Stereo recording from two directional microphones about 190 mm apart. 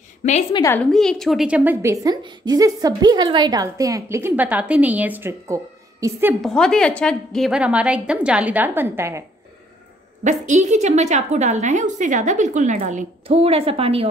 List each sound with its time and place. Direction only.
0.2 s a woman's voice: 35° left (ahead or behind)
0.6 s a woman's voice: 15° left (ahead or behind)
0.9 s a woman's voice: centre (ahead or behind); by 6.3 s 15° right (ahead or behind)
6.4 s a woman's voice: 5° left (ahead or behind); by 9.2 s 15° right (ahead or behind)
10.2 s a woman's voice: 40° right (ahead or behind)